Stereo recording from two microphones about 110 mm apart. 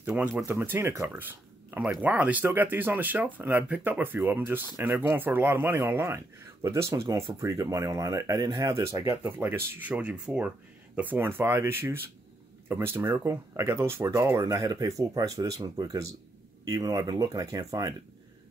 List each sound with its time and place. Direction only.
0.1 s speech: 10° right (ahead or behind)
14.4 s speech: 35° right (ahead or behind)